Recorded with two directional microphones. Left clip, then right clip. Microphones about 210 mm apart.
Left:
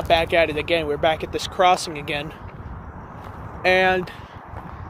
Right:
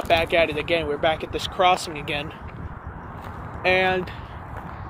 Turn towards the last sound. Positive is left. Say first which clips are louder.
# left 3 dB
turn(degrees=30)  # may be behind; listen again after turning